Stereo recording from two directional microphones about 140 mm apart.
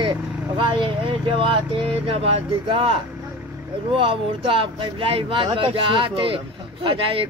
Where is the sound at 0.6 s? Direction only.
35° right (ahead or behind).